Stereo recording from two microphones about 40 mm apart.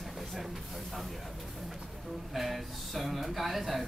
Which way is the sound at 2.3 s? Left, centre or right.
Centre.